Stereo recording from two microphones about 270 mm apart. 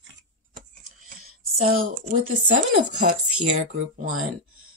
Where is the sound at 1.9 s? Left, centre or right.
Right.